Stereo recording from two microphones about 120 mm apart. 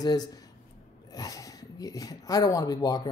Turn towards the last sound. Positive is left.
turn(degrees=35)  # may be behind; listen again after turning